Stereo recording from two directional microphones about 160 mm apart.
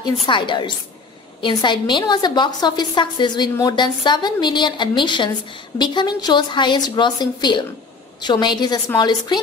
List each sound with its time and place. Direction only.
0.0 s a woman's voice: 30° left (ahead or behind)